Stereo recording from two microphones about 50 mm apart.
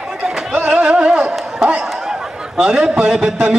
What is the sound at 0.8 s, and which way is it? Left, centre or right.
Speech, right.